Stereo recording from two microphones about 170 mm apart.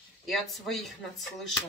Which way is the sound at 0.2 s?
Centre (ahead or behind).